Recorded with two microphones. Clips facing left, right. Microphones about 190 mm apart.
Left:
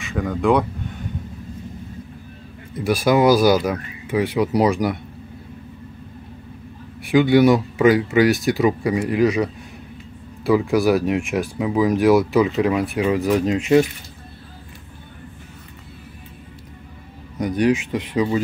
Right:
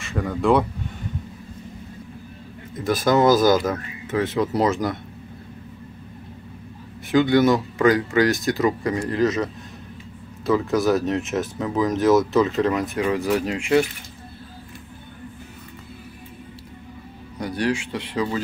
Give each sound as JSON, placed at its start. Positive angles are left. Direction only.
{"t": 0.0, "sound": "speech", "side_deg": 0}
{"t": 2.8, "sound": "speech", "side_deg": 10}
{"t": 7.1, "sound": "speech", "side_deg": 15}
{"t": 17.4, "sound": "a sound", "side_deg": 15}
{"t": 17.9, "sound": "speech", "side_deg": 15}